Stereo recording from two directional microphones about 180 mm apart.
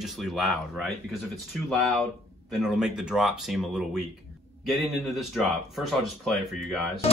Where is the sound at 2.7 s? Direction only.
5° right (ahead or behind).